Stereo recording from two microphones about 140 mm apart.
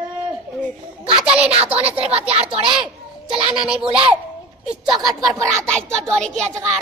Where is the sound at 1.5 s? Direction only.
45° right (ahead or behind).